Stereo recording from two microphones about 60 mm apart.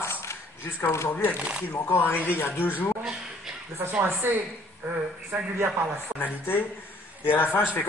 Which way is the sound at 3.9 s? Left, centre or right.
Right.